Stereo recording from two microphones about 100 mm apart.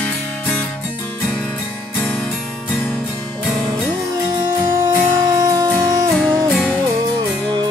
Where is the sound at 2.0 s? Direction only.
20° left (ahead or behind).